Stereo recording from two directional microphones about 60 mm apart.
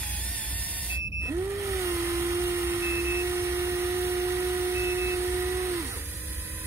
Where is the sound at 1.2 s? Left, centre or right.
Right.